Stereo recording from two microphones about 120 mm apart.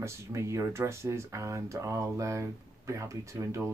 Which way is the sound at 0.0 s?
25° right (ahead or behind).